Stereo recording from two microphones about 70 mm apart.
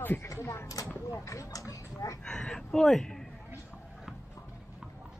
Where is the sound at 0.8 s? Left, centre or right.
Left.